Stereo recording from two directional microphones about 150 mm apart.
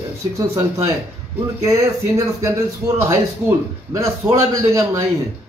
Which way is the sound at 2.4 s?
20° right (ahead or behind).